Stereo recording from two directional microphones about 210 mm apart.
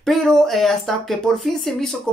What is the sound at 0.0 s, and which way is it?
Speech, centre (ahead or behind).